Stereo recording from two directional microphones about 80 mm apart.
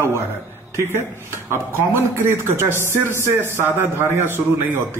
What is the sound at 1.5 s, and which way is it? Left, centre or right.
Speech, right.